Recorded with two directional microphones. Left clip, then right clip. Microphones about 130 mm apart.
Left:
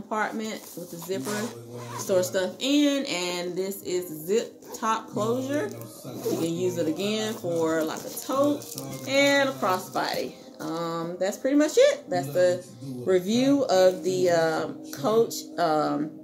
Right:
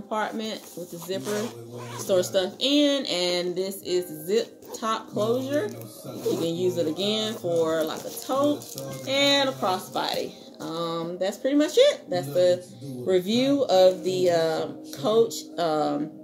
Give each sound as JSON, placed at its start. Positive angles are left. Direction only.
{"t": 0.1, "sound": "speech", "side_deg": -15}